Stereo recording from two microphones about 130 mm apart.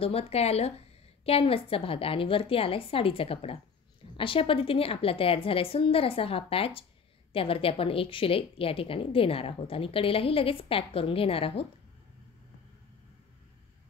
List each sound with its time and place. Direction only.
0.0 s a woman's voice: 50° left (ahead or behind)